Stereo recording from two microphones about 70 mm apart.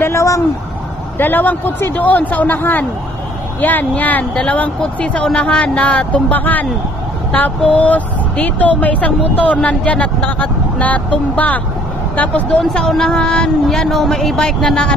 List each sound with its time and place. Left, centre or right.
0.0 s speech: left
1.1 s speech: left; by 15.0 s centre